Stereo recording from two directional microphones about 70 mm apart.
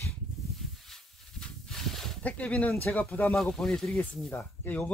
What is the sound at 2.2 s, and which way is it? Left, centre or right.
Speech, centre.